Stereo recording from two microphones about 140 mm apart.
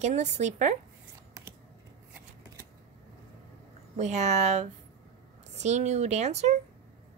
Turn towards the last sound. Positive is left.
turn(degrees=-50)  # may be behind; listen again after turning